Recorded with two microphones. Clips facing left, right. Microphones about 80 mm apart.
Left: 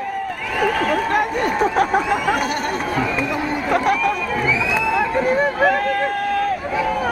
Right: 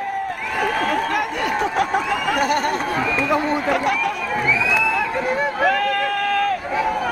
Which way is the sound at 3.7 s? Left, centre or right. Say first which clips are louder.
Left 6 dB; left.